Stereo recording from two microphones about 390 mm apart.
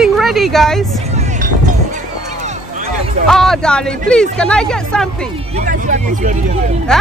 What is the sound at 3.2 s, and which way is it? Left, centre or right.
Speech, centre.